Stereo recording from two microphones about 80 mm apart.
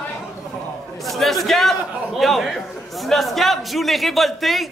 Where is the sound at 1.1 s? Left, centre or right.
Centre.